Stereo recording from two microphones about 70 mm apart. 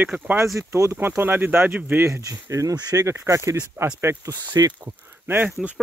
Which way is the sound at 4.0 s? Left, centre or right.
Right.